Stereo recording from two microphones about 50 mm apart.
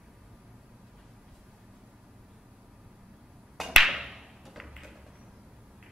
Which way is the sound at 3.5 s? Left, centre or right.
Centre.